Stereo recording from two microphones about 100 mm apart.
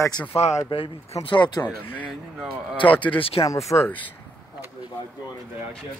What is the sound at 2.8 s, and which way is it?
Speech, 55° left (ahead or behind).